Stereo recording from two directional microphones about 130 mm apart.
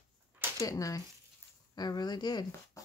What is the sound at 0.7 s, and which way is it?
Speech, 25° left (ahead or behind).